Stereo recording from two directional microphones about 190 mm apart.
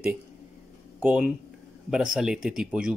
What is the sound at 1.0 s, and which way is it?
Speech, 5° right (ahead or behind).